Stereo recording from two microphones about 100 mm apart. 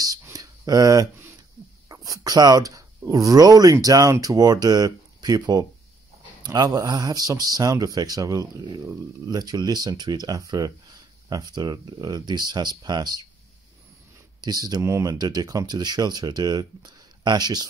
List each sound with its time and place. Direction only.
0.2 s a sound: 35° right (ahead or behind)
3.1 s speech: 35° right (ahead or behind)
14.4 s speech: 40° right (ahead or behind)
14.8 s speech: 30° right (ahead or behind)
15.1 s speech: 40° right (ahead or behind)